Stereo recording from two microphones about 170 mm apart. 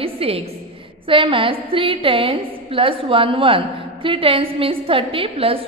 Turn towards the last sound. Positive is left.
turn(degrees=-35)  # may be behind; listen again after turning